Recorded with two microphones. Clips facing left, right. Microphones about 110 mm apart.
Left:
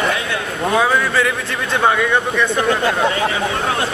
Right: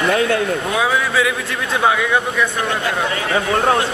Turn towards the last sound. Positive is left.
turn(degrees=-30)  # may be behind; listen again after turning